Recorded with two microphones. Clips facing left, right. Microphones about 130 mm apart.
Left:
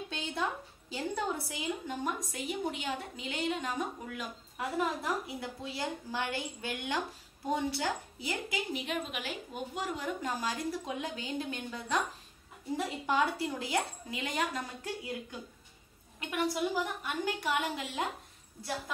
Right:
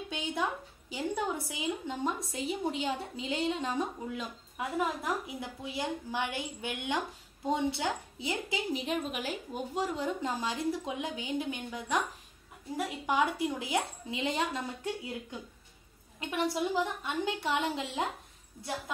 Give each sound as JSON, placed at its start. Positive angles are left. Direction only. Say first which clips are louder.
{"t": 0.1, "sound": "a woman's voice", "louder": "right 2 dB", "side_deg": -15}
{"t": 16.2, "sound": "a woman's voice", "louder": "right 1 dB", "side_deg": -25}